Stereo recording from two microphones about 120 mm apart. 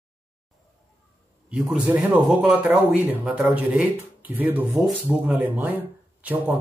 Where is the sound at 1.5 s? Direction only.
10° right (ahead or behind).